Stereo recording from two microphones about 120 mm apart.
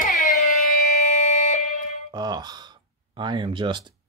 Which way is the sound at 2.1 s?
35° right (ahead or behind).